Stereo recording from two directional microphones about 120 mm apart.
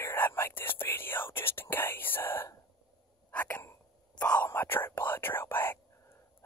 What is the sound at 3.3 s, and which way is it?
Hiccup, 15° left (ahead or behind).